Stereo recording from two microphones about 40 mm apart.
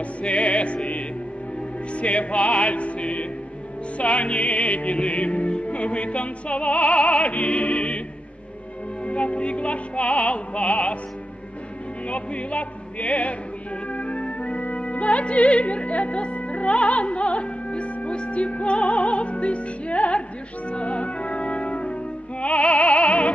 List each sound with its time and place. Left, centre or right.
0.0 s music: left
1.9 s music: left
9.0 s music: left
12.1 s music: left